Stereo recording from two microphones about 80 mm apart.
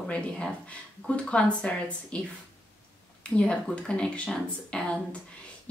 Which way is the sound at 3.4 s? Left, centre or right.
Centre.